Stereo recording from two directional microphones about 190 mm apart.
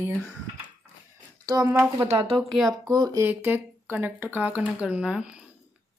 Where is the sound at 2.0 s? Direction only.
30° right (ahead or behind).